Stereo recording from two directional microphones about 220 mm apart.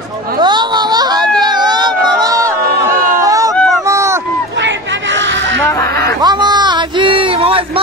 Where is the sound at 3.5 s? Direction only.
Centre (ahead or behind).